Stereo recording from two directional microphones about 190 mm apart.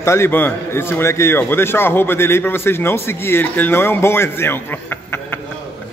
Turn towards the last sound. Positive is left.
turn(degrees=10)  # may be behind; listen again after turning